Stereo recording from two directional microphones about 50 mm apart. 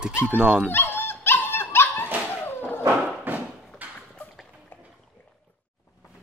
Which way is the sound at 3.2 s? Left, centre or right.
Right.